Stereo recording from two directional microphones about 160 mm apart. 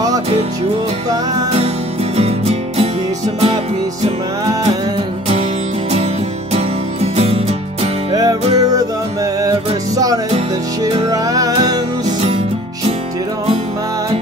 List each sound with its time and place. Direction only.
2.1 s music: 40° right (ahead or behind)
6.5 s music: 40° right (ahead or behind)
8.1 s music: 25° right (ahead or behind)